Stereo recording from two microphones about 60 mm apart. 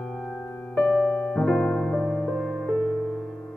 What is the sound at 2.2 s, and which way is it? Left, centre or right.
Music, centre.